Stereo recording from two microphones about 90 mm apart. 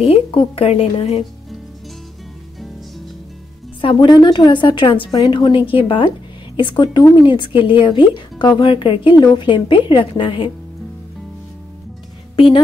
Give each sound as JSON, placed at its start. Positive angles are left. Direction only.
{"t": 0.0, "sound": "speech", "side_deg": 80}
{"t": 3.8, "sound": "speech", "side_deg": 60}
{"t": 5.7, "sound": "speech", "side_deg": 80}
{"t": 9.2, "sound": "speech", "side_deg": 60}
{"t": 12.4, "sound": "speech", "side_deg": 90}